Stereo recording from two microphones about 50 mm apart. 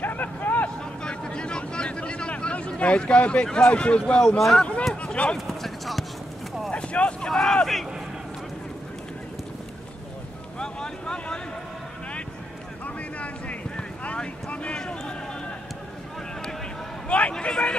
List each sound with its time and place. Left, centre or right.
0.0 s vehicle: left
1.0 s a sound: centre
3.5 s speech: left
5.0 s speech: left
5.5 s basketball bounce: centre
6.7 s vehicle: left
7.2 s speech: centre
10.6 s vehicle: centre
12.8 s boat: left
14.8 s a sound: centre
17.3 s speech: centre